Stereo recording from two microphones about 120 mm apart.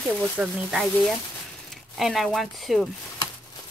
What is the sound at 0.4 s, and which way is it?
Speech, 5° right (ahead or behind).